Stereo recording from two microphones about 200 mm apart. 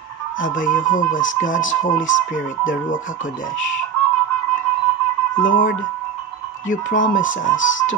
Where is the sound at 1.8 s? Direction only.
40° left (ahead or behind).